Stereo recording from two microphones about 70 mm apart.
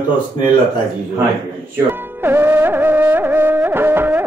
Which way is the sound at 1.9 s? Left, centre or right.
Right.